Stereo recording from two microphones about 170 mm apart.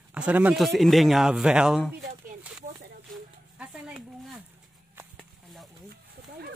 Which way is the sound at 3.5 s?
5° right (ahead or behind).